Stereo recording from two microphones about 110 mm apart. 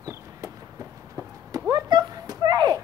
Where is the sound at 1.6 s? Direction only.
40° right (ahead or behind).